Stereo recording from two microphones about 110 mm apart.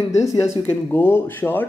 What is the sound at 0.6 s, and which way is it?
Speech, 20° left (ahead or behind).